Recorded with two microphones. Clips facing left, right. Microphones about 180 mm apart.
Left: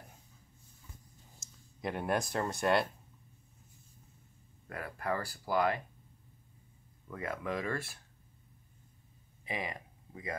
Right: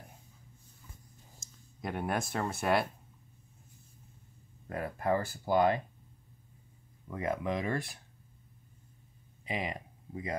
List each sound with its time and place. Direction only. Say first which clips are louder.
1.8 s speech: left 1 dB; centre (ahead or behind)
4.6 s speech: right 5 dB; 25° right (ahead or behind)
7.1 s speech: right 4 dB; 20° right (ahead or behind)
9.4 s a sound: right 3 dB; 20° right (ahead or behind)